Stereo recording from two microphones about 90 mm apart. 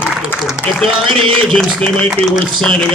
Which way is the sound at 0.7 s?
5° left (ahead or behind).